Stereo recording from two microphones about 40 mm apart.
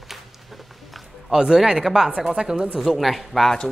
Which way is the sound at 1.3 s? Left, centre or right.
Centre.